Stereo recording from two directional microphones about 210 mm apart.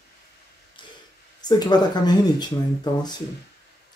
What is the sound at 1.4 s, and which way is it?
Speech, 20° left (ahead or behind).